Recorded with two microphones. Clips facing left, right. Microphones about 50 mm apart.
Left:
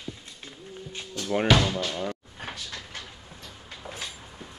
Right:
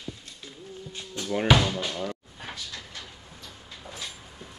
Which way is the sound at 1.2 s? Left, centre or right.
Right.